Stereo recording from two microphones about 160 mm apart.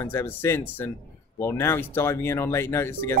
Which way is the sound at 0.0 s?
15° left (ahead or behind).